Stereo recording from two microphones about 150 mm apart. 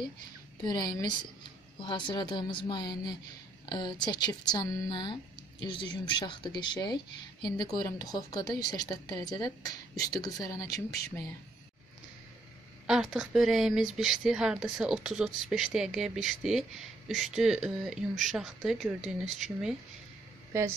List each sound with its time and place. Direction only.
0.7 s a woman's voice: 25° left (ahead or behind)
12.8 s speech: 5° right (ahead or behind)